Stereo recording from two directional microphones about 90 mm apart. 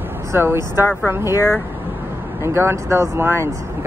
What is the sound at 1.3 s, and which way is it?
Speech, 35° left (ahead or behind).